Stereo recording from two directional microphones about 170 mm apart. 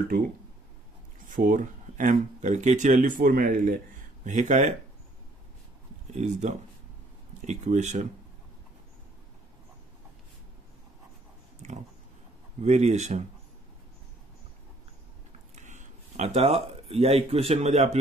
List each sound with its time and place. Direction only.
1.3 s speech: 50° right (ahead or behind)
6.1 s speech: 40° right (ahead or behind)
11.6 s dog: 45° right (ahead or behind)
12.6 s speech: 40° right (ahead or behind)
15.5 s speech: 45° right (ahead or behind)